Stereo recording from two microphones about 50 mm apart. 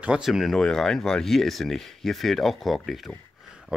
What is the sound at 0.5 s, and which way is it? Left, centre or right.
Speech, centre.